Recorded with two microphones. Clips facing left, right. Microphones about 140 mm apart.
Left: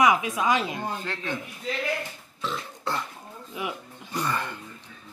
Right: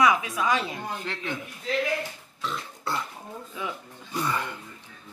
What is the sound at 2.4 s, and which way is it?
Burping, centre (ahead or behind).